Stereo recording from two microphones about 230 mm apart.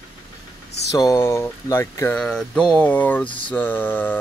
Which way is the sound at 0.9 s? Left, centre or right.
Centre.